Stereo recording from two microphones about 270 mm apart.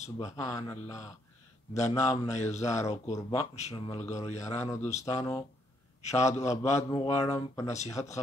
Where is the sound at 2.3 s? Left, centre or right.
Left.